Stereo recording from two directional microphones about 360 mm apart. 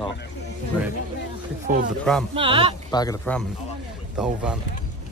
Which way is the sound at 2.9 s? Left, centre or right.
Centre.